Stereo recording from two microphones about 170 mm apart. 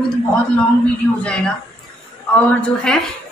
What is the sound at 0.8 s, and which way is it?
A woman's voice, 5° left (ahead or behind).